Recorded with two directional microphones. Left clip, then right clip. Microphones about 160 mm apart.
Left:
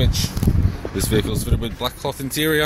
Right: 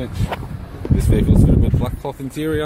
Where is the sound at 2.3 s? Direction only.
5° right (ahead or behind).